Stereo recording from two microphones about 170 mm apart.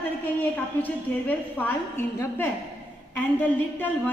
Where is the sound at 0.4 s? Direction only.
10° left (ahead or behind).